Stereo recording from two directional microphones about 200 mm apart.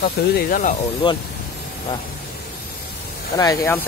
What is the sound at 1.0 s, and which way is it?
Speech, 25° left (ahead or behind).